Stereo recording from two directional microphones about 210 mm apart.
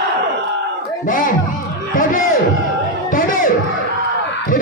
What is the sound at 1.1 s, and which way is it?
Music, 40° left (ahead or behind).